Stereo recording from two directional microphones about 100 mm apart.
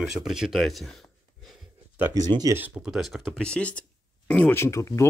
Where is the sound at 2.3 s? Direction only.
55° right (ahead or behind).